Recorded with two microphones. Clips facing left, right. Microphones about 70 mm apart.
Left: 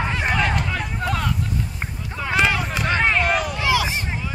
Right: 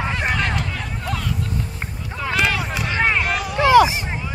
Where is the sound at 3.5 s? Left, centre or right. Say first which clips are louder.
Right 9 dB; right.